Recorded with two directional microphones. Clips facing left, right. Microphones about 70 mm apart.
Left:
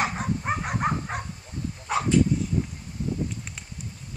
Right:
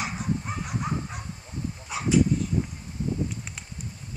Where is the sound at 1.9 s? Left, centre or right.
Left.